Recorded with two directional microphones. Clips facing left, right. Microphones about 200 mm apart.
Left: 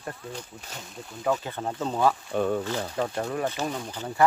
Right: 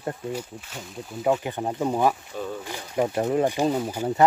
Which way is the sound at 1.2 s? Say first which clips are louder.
Right 4 dB; 20° right (ahead or behind).